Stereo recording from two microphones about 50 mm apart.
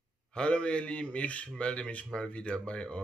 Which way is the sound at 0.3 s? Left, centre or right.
Left.